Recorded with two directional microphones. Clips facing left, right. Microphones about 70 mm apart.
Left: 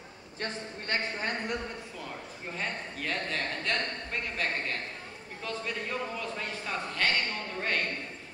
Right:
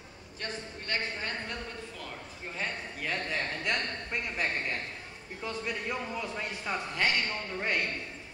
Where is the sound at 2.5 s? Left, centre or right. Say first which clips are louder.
Left 1 dB; centre.